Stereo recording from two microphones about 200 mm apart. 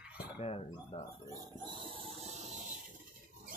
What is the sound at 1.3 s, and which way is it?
Speech, 25° right (ahead or behind).